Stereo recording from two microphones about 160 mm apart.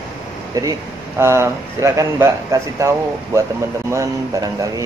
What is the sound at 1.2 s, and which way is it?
Speech, 15° right (ahead or behind).